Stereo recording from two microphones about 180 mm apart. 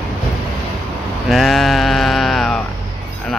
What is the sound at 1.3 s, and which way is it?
Sheep, centre (ahead or behind).